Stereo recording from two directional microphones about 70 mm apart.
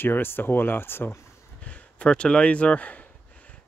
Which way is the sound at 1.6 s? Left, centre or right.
Centre.